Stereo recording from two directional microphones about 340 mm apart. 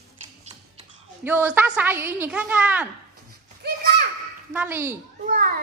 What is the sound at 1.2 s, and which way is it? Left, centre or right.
A woman's voice, centre.